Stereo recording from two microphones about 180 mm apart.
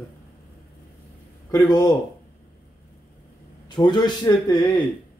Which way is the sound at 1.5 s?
20° left (ahead or behind).